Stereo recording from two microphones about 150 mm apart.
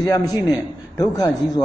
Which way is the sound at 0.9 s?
25° left (ahead or behind).